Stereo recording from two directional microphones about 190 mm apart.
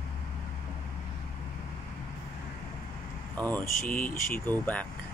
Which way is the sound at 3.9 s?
45° left (ahead or behind).